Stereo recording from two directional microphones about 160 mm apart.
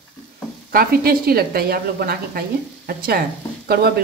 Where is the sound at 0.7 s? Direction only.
70° right (ahead or behind).